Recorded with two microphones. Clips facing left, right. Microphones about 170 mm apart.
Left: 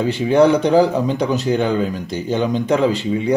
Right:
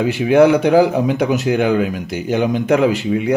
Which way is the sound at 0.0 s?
10° right (ahead or behind).